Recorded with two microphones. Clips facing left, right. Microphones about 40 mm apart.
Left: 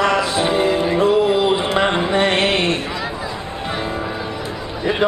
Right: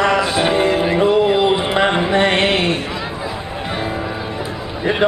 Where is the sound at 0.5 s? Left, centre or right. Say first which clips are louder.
Even; centre.